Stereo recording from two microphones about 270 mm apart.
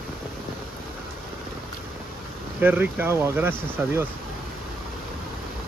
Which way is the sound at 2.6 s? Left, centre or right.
Centre.